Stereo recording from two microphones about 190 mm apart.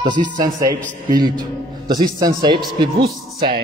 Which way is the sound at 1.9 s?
20° right (ahead or behind).